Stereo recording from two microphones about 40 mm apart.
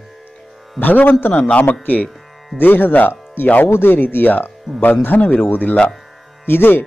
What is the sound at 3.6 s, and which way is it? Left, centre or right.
A man's voice, left.